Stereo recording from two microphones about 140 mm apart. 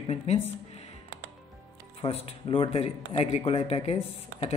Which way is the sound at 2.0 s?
45° left (ahead or behind).